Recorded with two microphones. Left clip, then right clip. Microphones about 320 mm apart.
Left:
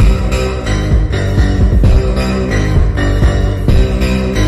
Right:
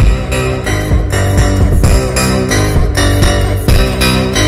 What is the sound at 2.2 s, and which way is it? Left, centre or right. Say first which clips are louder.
Music: right 5 dB; right.